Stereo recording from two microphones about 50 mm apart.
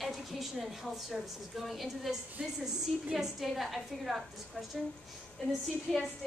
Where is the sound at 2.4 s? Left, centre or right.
Centre.